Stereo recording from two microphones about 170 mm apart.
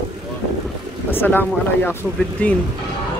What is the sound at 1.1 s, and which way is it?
Speech, 10° left (ahead or behind).